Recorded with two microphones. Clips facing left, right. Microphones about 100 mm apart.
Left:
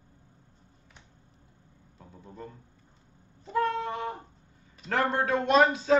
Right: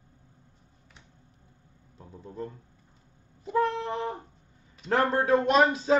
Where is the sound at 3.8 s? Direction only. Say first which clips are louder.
Right 2 dB; 30° right (ahead or behind).